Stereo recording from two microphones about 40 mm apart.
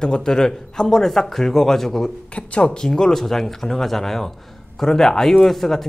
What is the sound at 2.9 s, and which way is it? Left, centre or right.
Speech, centre.